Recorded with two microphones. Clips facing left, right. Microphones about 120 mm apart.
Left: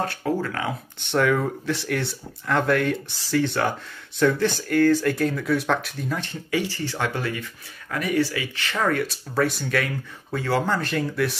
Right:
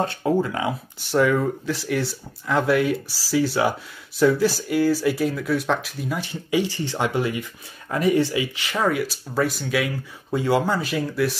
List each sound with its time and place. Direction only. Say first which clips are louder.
0.0 s speech: right 4 dB; 20° right (ahead or behind)
0.9 s speech: right 2 dB; 5° right (ahead or behind)
10.3 s speech: right 3 dB; 15° right (ahead or behind)